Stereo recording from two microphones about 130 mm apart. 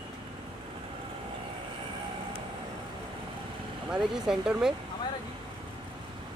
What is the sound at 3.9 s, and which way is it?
Speech, 5° right (ahead or behind).